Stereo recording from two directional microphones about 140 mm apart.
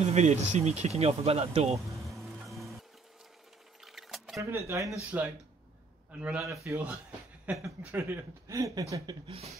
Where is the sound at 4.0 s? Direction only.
Centre (ahead or behind).